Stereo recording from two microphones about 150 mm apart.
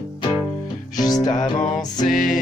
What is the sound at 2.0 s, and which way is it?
Music, 60° left (ahead or behind).